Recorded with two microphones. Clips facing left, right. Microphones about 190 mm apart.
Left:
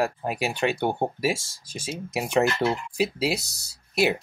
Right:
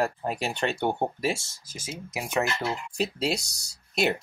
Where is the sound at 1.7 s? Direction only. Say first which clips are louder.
Left 5 dB; 30° left (ahead or behind).